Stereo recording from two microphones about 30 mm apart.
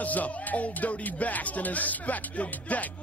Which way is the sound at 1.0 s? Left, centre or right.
Left.